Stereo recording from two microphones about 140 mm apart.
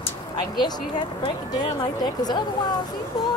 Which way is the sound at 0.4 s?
30° left (ahead or behind).